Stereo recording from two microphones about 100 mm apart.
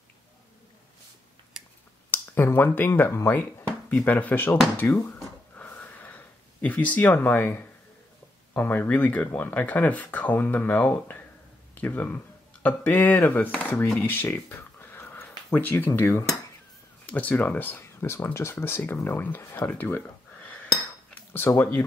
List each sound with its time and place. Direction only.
1.5 s finger snapping: 5° right (ahead or behind)
2.0 s speech: 20° left (ahead or behind)
5.6 s a sound: 15° left (ahead or behind)
8.5 s speech: 15° left (ahead or behind)
17.0 s speech: 15° left (ahead or behind)